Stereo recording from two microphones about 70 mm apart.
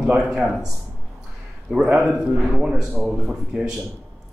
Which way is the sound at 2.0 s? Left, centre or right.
Centre.